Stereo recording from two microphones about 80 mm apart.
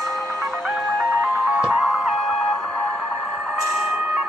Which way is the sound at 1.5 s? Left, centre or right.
Centre.